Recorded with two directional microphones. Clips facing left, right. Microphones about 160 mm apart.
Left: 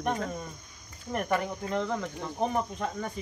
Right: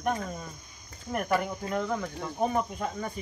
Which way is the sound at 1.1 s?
10° right (ahead or behind).